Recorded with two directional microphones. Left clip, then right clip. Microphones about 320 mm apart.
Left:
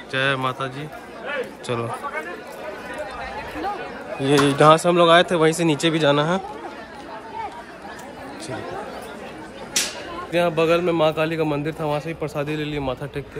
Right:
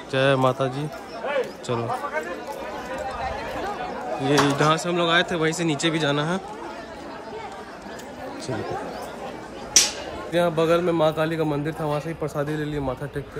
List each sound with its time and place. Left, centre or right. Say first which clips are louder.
0.1 s a man's voice: right 2 dB; centre
4.2 s a man's voice: left 4 dB; centre
10.3 s a man's voice: left 2 dB; centre